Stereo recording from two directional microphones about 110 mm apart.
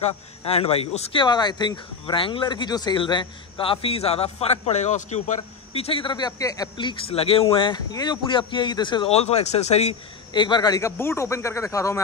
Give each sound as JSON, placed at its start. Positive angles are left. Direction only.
{"t": 0.5, "sound": "speech", "side_deg": 65}
{"t": 1.1, "sound": "speech", "side_deg": 40}
{"t": 7.1, "sound": "speech", "side_deg": 60}
{"t": 7.5, "sound": "speech", "side_deg": 45}
{"t": 9.1, "sound": "speech", "side_deg": 75}
{"t": 10.3, "sound": "speech", "side_deg": 45}
{"t": 10.8, "sound": "speech", "side_deg": 25}